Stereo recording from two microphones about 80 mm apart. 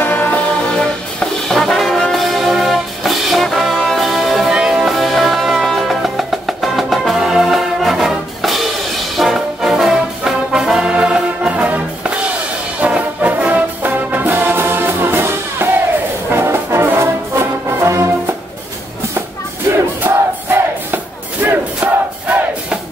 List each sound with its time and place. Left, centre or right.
0.0 s music: left
0.7 s brass instrument: centre
4.5 s music: centre
9.1 s brass instrument: centre; by 18.0 s right
19.7 s battle cry: right
20.0 s music: right
21.4 s battle cry: right